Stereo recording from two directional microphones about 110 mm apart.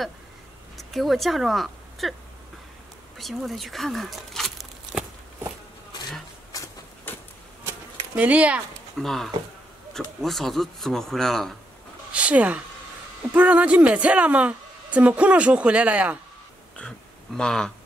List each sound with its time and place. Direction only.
0.7 s speech: centre (ahead or behind)
3.2 s speech: centre (ahead or behind)
6.5 s a sound: 30° left (ahead or behind)
8.2 s a woman's voice: 10° right (ahead or behind)
8.9 s speech: centre (ahead or behind)
12.1 s a woman's voice: 10° right (ahead or behind)
17.4 s speech: 5° left (ahead or behind)